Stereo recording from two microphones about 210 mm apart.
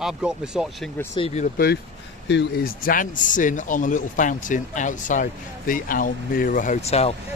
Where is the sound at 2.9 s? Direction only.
40° left (ahead or behind).